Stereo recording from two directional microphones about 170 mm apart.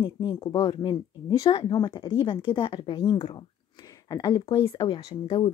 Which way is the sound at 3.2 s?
40° left (ahead or behind).